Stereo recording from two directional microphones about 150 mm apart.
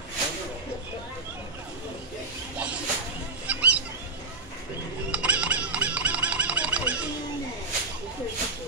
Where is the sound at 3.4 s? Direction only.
10° right (ahead or behind).